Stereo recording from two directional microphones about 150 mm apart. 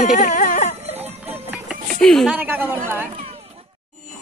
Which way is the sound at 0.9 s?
15° right (ahead or behind).